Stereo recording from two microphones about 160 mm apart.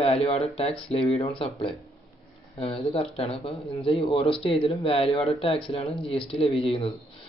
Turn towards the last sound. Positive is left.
turn(degrees=35)  # may be behind; listen again after turning